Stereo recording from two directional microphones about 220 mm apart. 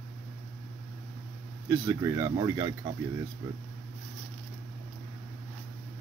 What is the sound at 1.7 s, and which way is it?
Speech, 15° right (ahead or behind).